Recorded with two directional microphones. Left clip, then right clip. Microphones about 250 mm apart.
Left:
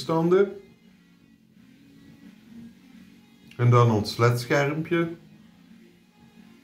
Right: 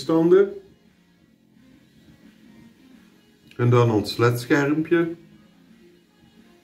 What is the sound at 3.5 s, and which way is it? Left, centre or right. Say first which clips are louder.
Speech: right 2 dB; centre.